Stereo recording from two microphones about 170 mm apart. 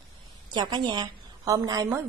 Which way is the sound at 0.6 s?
25° right (ahead or behind).